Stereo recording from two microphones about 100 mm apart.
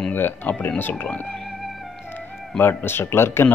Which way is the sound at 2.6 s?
20° left (ahead or behind).